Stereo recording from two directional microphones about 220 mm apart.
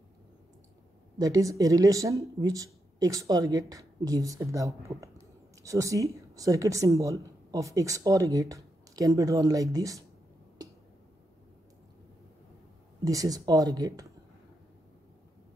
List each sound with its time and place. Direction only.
1.1 s speech: 15° right (ahead or behind)
13.0 s speech: 15° right (ahead or behind)